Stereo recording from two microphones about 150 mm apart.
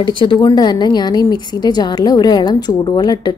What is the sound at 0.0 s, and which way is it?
A woman's voice, 30° left (ahead or behind).